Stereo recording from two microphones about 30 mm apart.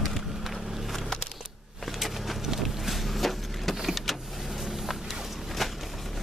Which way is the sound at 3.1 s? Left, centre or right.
Centre.